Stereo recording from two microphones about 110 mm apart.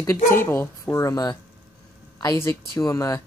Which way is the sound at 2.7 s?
30° left (ahead or behind).